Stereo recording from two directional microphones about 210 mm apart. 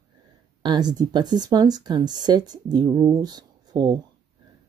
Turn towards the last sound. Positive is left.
turn(degrees=-20)  # may be behind; listen again after turning